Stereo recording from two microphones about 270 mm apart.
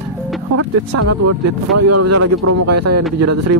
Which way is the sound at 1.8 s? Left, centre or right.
Right.